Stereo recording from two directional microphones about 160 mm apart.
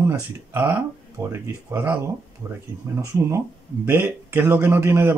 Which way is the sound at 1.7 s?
10° right (ahead or behind).